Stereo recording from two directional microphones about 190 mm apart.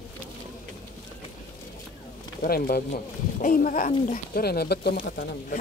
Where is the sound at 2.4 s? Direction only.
50° left (ahead or behind).